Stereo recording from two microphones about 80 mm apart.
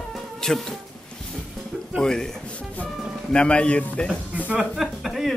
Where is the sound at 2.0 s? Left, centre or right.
Centre.